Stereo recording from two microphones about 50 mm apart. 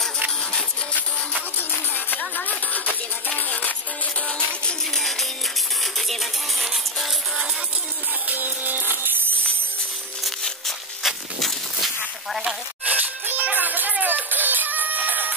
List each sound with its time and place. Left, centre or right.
0.4 s music: centre
2.0 s music: left
4.9 s music: centre
8.3 s music: right
11.0 s a sound: centre
12.8 s music: right